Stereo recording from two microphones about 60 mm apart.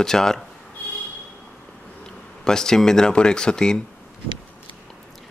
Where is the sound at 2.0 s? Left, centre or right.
Centre.